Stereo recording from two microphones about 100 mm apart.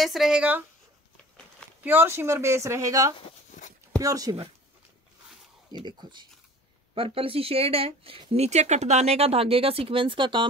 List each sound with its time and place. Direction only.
0.0 s a woman's voice: centre (ahead or behind)
1.8 s speech: 20° right (ahead or behind); by 4.5 s 40° right (ahead or behind)
5.7 s speech: 45° right (ahead or behind)
7.0 s speech: 70° right (ahead or behind)